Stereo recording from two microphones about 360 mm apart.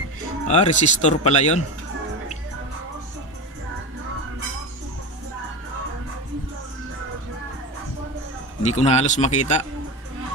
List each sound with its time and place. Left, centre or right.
0.5 s speech: centre
8.6 s speech: centre